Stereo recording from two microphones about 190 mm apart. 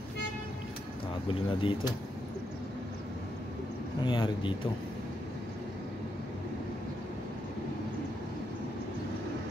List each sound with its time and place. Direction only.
1.5 s speech: 25° left (ahead or behind)
4.0 s speech: 25° left (ahead or behind)